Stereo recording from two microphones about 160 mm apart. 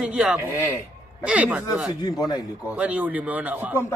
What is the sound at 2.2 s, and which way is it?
Speech, 25° left (ahead or behind).